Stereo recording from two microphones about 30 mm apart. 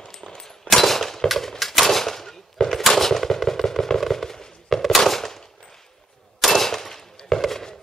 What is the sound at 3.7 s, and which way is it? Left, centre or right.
Fireworks, centre.